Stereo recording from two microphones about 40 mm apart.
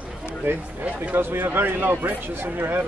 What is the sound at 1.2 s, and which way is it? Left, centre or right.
Speech, right.